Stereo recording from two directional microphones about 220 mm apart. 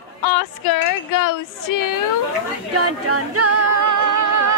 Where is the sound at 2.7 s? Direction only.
90° right.